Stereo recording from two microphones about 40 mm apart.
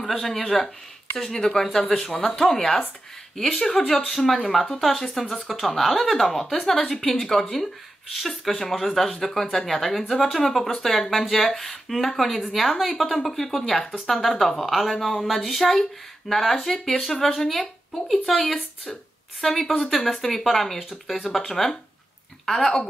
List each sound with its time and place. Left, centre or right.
0.2 s speech: centre
6.4 s a woman's voice: left
6.7 s speech: centre